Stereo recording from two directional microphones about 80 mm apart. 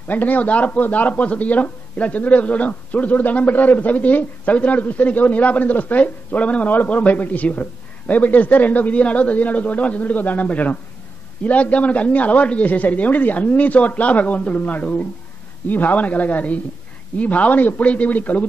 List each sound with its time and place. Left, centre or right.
0.1 s speech: left